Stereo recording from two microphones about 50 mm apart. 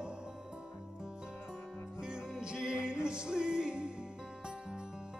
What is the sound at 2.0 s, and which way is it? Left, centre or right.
Music, centre.